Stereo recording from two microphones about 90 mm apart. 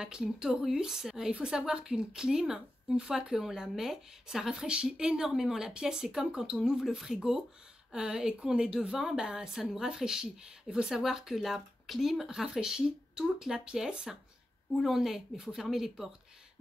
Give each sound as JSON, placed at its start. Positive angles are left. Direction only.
{"t": 0.0, "sound": "a woman's voice", "side_deg": -10}